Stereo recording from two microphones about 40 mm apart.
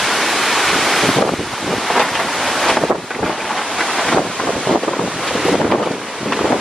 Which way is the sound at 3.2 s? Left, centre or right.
Centre.